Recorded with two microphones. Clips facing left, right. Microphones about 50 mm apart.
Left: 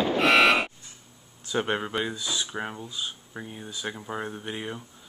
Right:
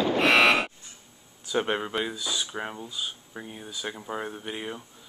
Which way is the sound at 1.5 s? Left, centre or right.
Centre.